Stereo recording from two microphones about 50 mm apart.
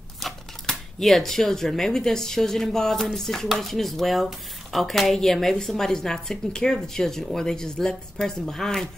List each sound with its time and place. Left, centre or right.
0.2 s shuffling cards: centre
1.7 s speech: centre